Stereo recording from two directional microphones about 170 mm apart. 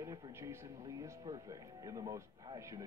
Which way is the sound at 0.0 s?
15° right (ahead or behind).